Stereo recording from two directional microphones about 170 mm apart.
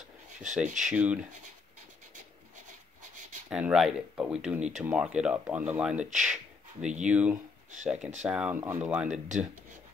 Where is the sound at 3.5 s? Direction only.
5° right (ahead or behind).